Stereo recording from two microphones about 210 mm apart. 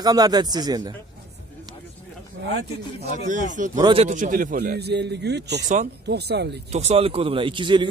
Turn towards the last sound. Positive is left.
turn(degrees=-20)  # may be behind; listen again after turning